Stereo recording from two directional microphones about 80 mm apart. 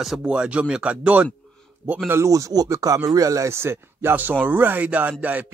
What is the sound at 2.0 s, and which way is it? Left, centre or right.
Speech, right.